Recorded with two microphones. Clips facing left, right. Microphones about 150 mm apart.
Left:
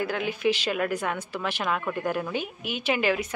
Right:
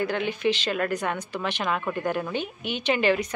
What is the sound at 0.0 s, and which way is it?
Speech, 5° left (ahead or behind).